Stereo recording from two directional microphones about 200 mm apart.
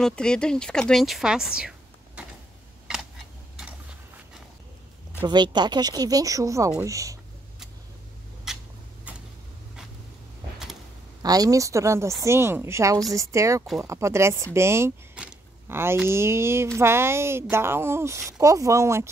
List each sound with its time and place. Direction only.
0.0 s speech: 5° left (ahead or behind)
2.9 s camera: 5° right (ahead or behind)
5.2 s a woman's voice: 20° right (ahead or behind)
8.5 s a sound: centre (ahead or behind)
11.2 s a woman's voice: 20° right (ahead or behind)